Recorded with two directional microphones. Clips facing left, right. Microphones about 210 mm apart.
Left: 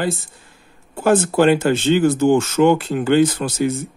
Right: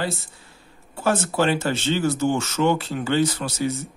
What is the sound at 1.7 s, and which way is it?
Speech, 55° left (ahead or behind).